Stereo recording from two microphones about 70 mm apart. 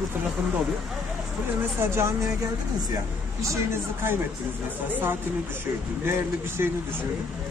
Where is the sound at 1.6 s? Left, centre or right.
Right.